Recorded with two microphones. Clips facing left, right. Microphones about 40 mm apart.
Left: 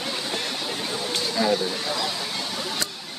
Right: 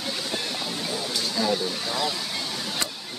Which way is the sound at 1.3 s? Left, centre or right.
Centre.